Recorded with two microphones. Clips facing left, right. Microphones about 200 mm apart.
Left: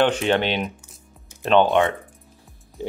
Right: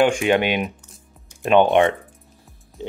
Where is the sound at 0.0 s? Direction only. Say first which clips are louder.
Right 2 dB; 10° right (ahead or behind).